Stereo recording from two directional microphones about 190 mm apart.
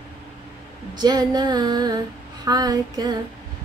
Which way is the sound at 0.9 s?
20° right (ahead or behind).